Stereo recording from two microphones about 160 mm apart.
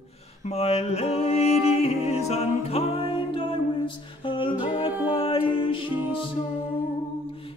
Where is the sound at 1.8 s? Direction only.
40° left (ahead or behind).